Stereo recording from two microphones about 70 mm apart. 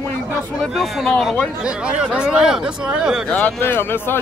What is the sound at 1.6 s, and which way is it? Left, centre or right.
Speech, centre.